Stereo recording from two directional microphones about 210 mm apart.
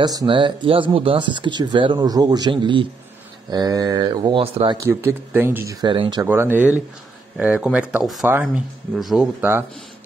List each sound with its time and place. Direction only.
0.0 s speech: 20° right (ahead or behind)
4.7 s speech: 10° right (ahead or behind)
6.2 s speech: 10° right (ahead or behind)